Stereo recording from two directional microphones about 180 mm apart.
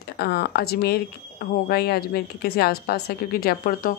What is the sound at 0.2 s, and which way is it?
A woman's voice, 65° left (ahead or behind).